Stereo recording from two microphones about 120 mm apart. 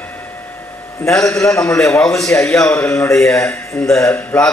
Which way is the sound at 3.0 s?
25° left (ahead or behind).